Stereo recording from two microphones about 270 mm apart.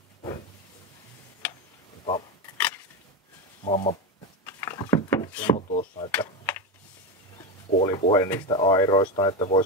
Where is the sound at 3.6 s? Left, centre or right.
Left.